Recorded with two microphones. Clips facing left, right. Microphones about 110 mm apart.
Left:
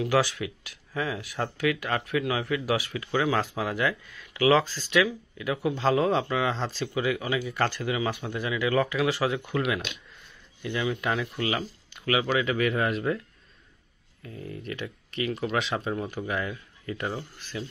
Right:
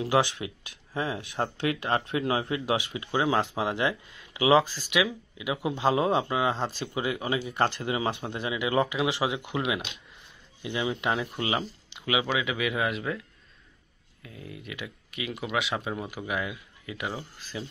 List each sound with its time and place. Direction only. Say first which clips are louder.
0.0 s speech: even; 20° right (ahead or behind); by 13.2 s centre (ahead or behind)
14.2 s speech: left 5 dB; 5° right (ahead or behind)